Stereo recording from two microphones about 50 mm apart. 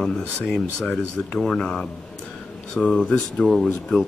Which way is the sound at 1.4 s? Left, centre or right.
Centre.